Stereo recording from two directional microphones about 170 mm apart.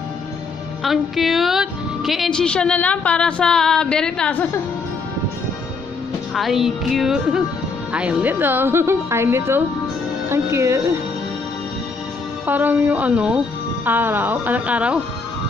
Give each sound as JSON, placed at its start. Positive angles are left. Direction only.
{"t": 0.8, "sound": "a woman's voice", "side_deg": 0}
{"t": 6.3, "sound": "a woman's voice", "side_deg": 0}
{"t": 12.4, "sound": "a woman's voice", "side_deg": -10}